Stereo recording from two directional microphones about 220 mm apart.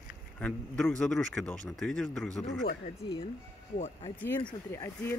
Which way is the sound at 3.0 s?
25° left (ahead or behind).